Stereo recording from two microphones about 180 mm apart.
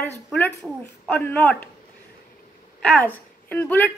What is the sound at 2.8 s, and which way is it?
A woman's voice, 5° left (ahead or behind).